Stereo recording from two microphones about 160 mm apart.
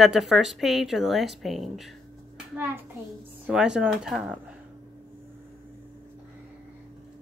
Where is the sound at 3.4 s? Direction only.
5° right (ahead or behind).